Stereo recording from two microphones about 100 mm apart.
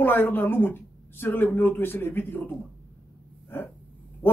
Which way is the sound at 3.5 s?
20° left (ahead or behind).